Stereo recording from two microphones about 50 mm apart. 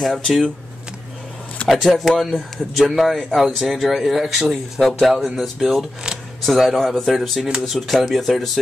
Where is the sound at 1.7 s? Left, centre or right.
Centre.